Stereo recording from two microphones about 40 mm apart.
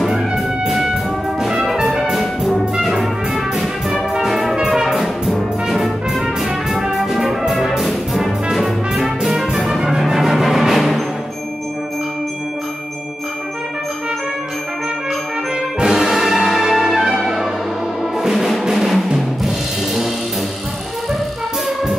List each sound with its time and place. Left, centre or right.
0.0 s music: centre
1.9 s brass instrument: centre
2.6 s music: centre
4.3 s brass instrument: centre
7.5 s music: centre
15.8 s music: centre